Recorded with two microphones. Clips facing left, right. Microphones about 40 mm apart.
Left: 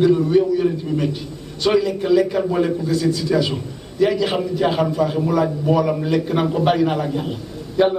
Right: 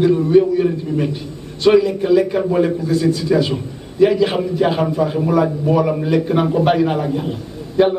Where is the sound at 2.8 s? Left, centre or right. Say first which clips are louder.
Right 2 dB; right.